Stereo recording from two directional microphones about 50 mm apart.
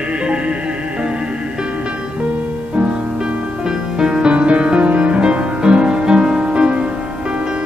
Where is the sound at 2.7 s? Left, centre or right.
Centre.